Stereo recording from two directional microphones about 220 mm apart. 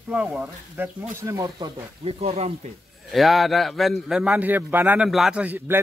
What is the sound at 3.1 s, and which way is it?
A man's voice, centre (ahead or behind).